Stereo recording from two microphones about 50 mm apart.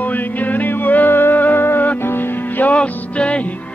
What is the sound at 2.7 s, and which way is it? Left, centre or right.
Music, left.